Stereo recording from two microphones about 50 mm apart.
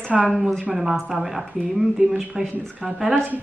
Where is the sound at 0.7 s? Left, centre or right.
Centre.